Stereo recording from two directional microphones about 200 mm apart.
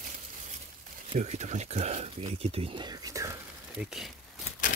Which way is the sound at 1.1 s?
35° right (ahead or behind).